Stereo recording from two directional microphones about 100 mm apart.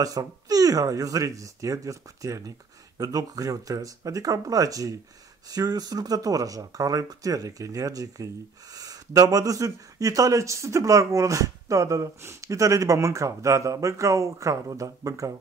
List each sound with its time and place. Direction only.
0.0 s speech: 35° right (ahead or behind)